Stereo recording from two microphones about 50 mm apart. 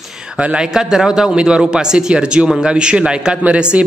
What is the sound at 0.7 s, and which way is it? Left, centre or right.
Speech, centre.